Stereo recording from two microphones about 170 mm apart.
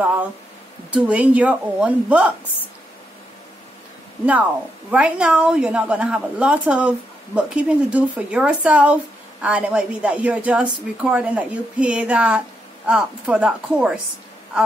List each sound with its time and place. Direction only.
0.0 s a woman's voice: 10° right (ahead or behind)
4.9 s a woman's voice: 5° right (ahead or behind)